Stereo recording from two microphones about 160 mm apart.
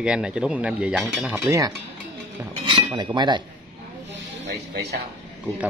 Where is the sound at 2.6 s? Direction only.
30° right (ahead or behind).